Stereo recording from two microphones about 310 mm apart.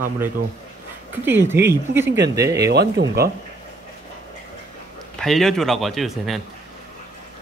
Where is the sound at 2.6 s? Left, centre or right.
Right.